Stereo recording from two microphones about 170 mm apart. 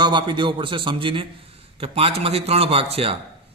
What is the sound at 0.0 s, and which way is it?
A man's voice, 30° right (ahead or behind).